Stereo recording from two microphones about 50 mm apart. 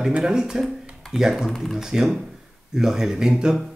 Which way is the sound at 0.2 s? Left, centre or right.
Centre.